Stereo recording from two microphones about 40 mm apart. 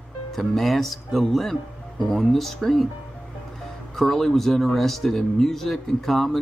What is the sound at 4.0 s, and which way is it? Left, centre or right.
Speech, centre.